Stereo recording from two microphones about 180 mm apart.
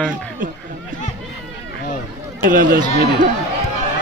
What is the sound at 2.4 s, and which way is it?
Speech, 55° right (ahead or behind).